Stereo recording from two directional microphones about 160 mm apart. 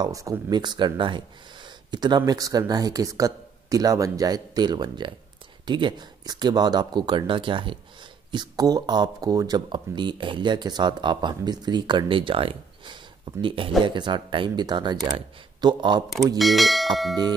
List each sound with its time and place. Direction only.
0.0 s speech: 20° right (ahead or behind)
16.3 s speech: centre (ahead or behind)